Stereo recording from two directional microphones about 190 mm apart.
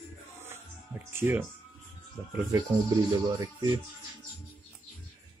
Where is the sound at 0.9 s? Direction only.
10° right (ahead or behind).